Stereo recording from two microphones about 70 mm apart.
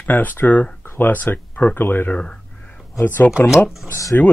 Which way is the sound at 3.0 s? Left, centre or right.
Left.